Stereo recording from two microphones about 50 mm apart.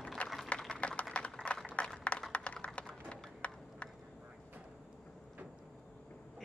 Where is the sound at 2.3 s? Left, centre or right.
Left.